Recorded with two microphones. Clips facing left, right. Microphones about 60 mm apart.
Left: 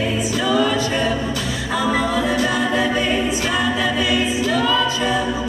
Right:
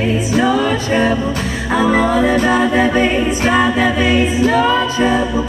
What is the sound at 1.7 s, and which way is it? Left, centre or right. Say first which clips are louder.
A capella: right 6 dB; right.